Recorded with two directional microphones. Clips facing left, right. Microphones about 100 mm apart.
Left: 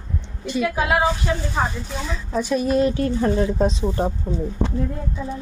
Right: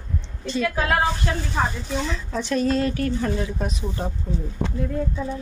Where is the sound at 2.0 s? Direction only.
10° left (ahead or behind); by 4.7 s 25° left (ahead or behind).